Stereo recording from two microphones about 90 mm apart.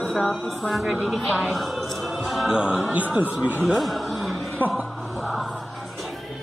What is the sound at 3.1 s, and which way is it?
Speech, 20° right (ahead or behind).